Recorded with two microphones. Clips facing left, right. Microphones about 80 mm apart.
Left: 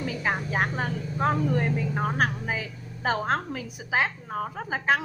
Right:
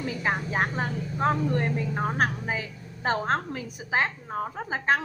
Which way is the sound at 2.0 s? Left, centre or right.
Centre.